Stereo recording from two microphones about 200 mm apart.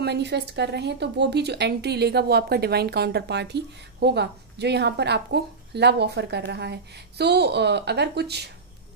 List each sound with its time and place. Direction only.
0.0 s speech: 55° right (ahead or behind)